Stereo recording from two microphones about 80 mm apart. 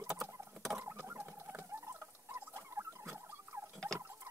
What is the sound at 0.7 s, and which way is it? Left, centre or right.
Rodents, right.